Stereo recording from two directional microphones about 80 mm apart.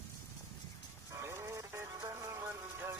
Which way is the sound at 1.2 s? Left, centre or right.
Right.